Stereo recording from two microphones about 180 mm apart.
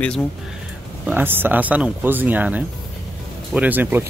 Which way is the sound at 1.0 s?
10° right (ahead or behind).